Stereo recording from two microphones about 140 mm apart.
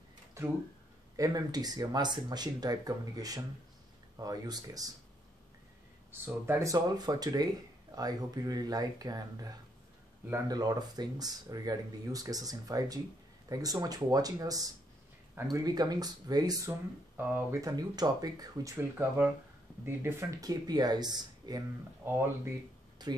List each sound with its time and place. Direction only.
0.4 s a sound: 20° right (ahead or behind)
1.1 s speech: 25° right (ahead or behind)
6.2 s speech: 15° right (ahead or behind)
10.5 s speech: 30° right (ahead or behind)
18.8 s speech: 15° right (ahead or behind)
22.0 s speech: 15° right (ahead or behind)
23.0 s speech: 30° right (ahead or behind)